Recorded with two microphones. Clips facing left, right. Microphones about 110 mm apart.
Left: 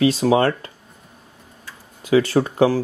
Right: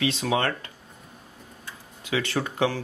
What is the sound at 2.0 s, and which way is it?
Speech, 35° left (ahead or behind).